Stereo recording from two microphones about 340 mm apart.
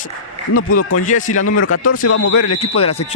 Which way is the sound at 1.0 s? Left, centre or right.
Left.